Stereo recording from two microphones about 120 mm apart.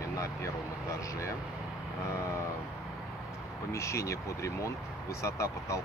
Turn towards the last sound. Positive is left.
turn(degrees=25)  # may be behind; listen again after turning